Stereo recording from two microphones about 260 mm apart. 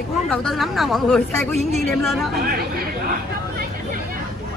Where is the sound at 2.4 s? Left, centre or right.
Right.